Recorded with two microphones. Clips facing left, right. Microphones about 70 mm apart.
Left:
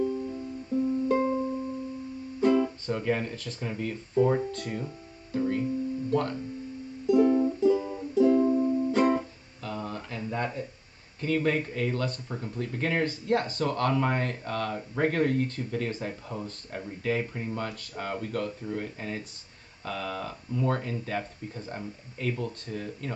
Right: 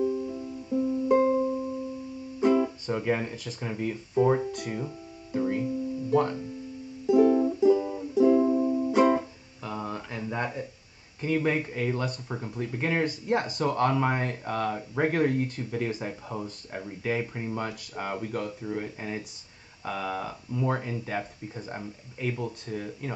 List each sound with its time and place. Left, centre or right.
0.0 s music: centre
2.4 s speech: centre
7.1 s music: centre
11.1 s speech: centre